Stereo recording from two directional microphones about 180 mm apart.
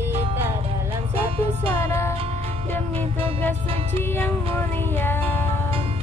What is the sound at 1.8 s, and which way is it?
Music, 15° left (ahead or behind).